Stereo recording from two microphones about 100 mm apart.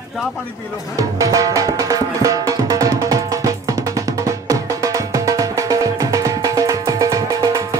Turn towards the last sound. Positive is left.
turn(degrees=-35)  # may be behind; listen again after turning